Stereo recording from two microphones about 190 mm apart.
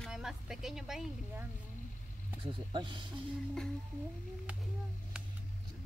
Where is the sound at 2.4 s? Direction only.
25° right (ahead or behind).